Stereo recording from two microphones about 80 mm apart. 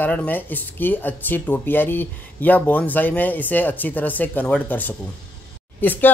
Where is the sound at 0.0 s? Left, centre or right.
Left.